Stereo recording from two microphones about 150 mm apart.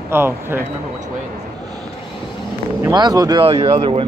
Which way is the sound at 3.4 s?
40° right (ahead or behind).